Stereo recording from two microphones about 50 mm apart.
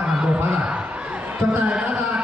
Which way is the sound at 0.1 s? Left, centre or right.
Centre.